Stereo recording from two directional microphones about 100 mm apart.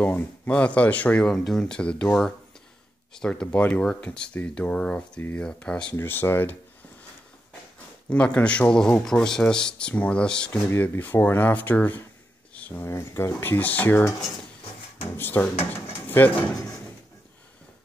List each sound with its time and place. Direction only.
0.0 s speech: 15° left (ahead or behind)
5.9 s speech: 25° left (ahead or behind)
8.1 s speech: 10° left (ahead or behind)
12.5 s a sound: 15° left (ahead or behind)
12.8 s speech: 25° left (ahead or behind)
15.0 s speech: 20° left (ahead or behind)
15.7 s a sound: 20° left (ahead or behind)